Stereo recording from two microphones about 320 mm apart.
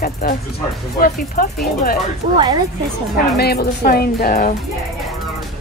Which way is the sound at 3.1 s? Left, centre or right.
Left.